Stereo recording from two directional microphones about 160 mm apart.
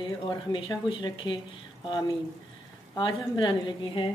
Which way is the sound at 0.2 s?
30° left (ahead or behind).